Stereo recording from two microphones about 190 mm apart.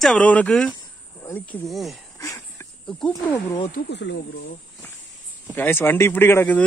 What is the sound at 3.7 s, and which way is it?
Speech, 65° left (ahead or behind).